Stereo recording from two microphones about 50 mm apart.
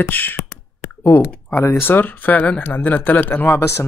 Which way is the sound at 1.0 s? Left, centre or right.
Left.